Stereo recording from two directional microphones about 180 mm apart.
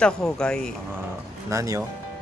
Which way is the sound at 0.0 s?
5° left (ahead or behind).